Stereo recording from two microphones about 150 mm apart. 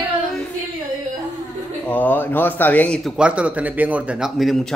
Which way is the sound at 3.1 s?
5° right (ahead or behind).